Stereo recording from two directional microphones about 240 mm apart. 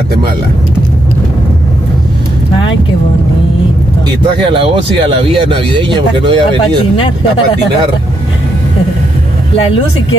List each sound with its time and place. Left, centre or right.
4.5 s speech: right